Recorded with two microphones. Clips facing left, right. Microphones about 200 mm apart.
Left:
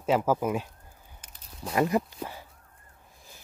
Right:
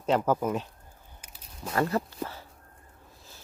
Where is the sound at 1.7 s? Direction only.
15° left (ahead or behind).